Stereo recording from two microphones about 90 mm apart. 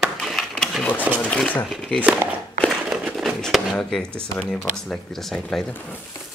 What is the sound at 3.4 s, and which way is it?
Speech, 5° left (ahead or behind).